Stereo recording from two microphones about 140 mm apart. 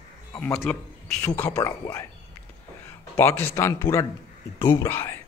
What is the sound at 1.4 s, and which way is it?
A man's voice, 20° left (ahead or behind).